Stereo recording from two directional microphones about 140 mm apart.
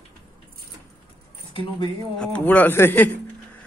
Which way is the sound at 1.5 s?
40° left (ahead or behind).